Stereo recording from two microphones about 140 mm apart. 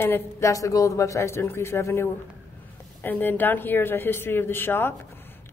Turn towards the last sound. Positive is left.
turn(degrees=15)  # may be behind; listen again after turning